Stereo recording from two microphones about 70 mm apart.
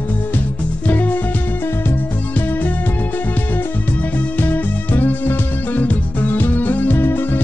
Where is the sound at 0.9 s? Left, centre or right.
Left.